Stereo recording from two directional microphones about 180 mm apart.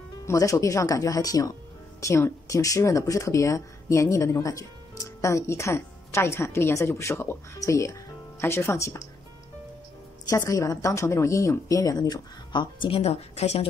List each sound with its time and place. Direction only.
0.2 s a woman's voice: 15° left (ahead or behind)
10.3 s a woman's voice: 15° left (ahead or behind); by 13.7 s 35° left (ahead or behind)